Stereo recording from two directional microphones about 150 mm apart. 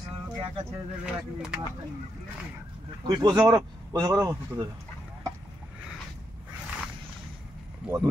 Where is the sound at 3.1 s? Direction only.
30° right (ahead or behind).